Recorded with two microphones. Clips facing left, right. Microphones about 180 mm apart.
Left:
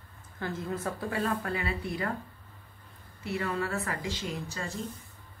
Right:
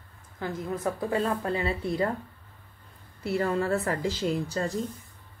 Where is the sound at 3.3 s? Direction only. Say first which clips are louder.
Right 6 dB; 40° right (ahead or behind).